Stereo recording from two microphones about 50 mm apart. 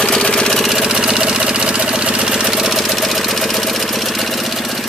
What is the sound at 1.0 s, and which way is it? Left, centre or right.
Engine, centre.